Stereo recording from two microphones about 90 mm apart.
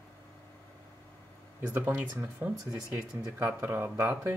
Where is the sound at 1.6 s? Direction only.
20° right (ahead or behind).